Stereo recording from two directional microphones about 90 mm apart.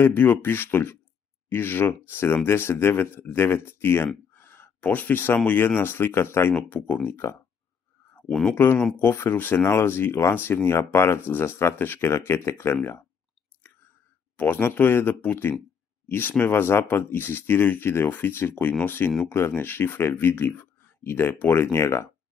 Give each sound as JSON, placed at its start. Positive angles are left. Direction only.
{"t": 0.0, "sound": "speech", "side_deg": 25}
{"t": 8.3, "sound": "speech", "side_deg": 5}
{"t": 8.5, "sound": "speech", "side_deg": 25}
{"t": 14.3, "sound": "speech", "side_deg": 20}